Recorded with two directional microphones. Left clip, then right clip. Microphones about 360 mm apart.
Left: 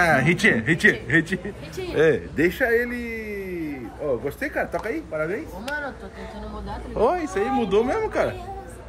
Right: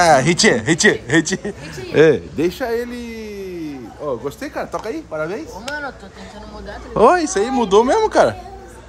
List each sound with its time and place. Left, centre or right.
0.0 s speech: centre
4.4 s speech: centre
5.7 s a sound: right
7.0 s speech: right
7.2 s speech: centre